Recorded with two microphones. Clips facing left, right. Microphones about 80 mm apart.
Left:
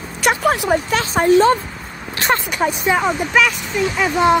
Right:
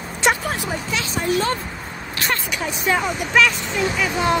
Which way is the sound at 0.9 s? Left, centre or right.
Left.